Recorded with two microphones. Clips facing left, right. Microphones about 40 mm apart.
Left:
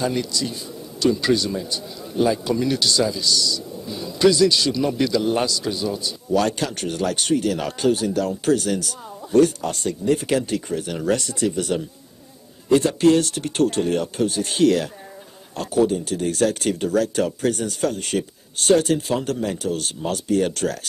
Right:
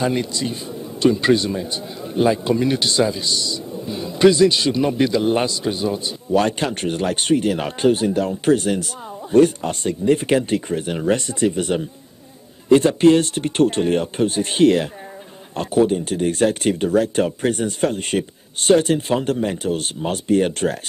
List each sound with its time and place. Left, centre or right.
0.0 s a man's voice: right